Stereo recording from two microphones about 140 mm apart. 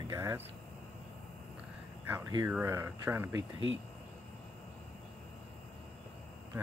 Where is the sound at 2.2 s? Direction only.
30° right (ahead or behind).